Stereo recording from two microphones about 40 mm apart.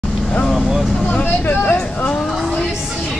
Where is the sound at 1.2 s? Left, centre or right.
Left.